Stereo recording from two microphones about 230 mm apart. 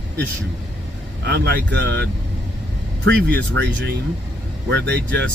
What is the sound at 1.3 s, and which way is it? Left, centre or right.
Speech, right.